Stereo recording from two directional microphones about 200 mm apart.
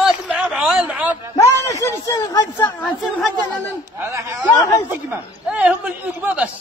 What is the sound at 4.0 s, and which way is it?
A man's voice, 15° right (ahead or behind).